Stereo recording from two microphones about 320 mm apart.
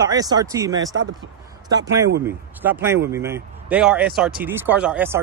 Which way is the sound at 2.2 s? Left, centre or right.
Centre.